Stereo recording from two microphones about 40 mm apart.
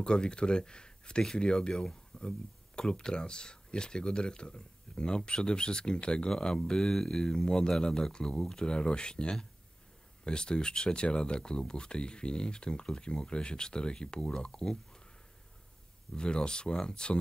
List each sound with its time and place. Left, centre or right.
0.0 s speech: left
2.1 s a sound: left
2.9 s speech: left
16.2 s speech: left